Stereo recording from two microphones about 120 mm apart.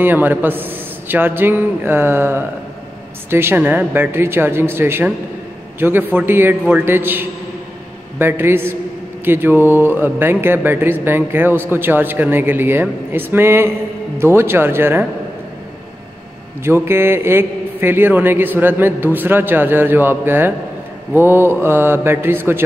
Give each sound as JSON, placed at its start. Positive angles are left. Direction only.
{"t": 0.0, "sound": "a man's voice", "side_deg": -15}
{"t": 16.6, "sound": "a man's voice", "side_deg": -20}